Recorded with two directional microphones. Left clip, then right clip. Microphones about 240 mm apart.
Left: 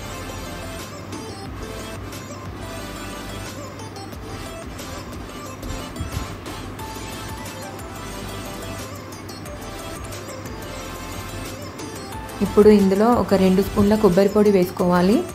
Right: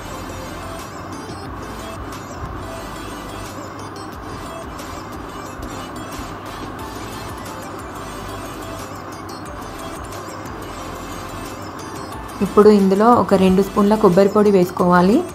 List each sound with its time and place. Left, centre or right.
12.6 s speech: centre